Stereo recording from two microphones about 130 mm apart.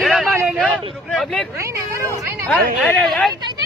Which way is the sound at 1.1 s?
5° left (ahead or behind).